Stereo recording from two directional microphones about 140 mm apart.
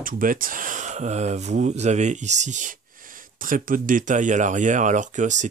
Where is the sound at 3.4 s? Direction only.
75° right (ahead or behind).